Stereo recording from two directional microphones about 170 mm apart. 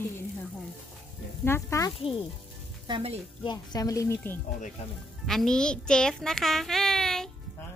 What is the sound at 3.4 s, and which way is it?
Speech, 25° left (ahead or behind).